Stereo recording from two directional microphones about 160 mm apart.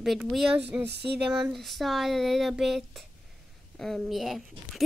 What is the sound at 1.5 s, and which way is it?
A woman's voice, centre (ahead or behind).